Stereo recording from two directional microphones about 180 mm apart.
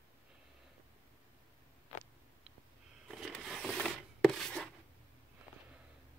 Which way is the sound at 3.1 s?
Centre (ahead or behind).